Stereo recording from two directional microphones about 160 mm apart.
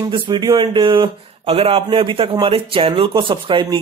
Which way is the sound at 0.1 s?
30° right (ahead or behind).